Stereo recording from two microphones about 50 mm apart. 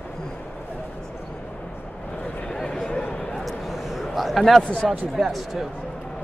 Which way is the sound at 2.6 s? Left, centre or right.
Centre.